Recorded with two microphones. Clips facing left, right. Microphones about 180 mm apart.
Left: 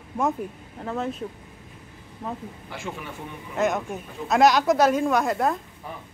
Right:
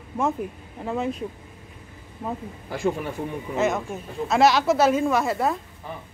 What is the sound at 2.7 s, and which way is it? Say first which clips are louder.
Speech: right 10 dB; 40° right (ahead or behind).